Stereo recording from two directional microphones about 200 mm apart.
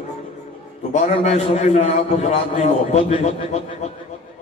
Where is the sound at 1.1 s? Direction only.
35° left (ahead or behind).